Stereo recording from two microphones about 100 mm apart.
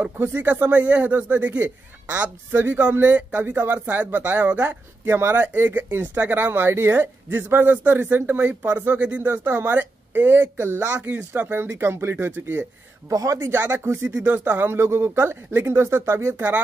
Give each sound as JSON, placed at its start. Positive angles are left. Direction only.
{"t": 0.0, "sound": "speech", "side_deg": -20}
{"t": 9.3, "sound": "speech", "side_deg": -20}
{"t": 11.0, "sound": "speech", "side_deg": -15}
{"t": 13.1, "sound": "speech", "side_deg": -35}
{"t": 14.1, "sound": "speech", "side_deg": -10}